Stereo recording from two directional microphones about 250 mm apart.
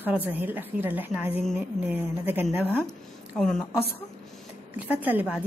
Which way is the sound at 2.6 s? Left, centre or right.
Centre.